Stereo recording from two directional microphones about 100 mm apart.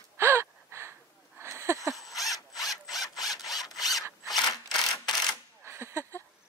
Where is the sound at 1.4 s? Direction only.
25° right (ahead or behind).